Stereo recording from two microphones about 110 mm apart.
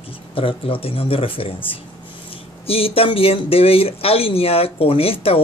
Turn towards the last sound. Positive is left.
turn(degrees=60)  # may be behind; listen again after turning